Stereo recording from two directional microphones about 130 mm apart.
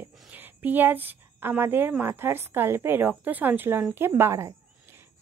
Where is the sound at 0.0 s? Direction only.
15° right (ahead or behind).